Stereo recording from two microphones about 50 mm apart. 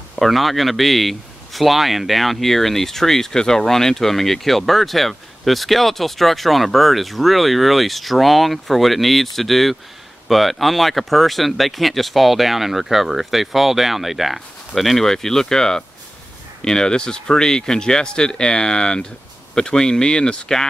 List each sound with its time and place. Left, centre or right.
0.1 s a man's voice: centre